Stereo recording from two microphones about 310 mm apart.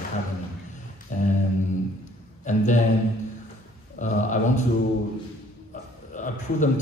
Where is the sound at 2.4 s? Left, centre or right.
Left.